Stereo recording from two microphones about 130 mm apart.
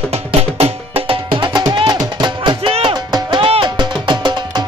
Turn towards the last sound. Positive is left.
turn(degrees=-35)  # may be behind; listen again after turning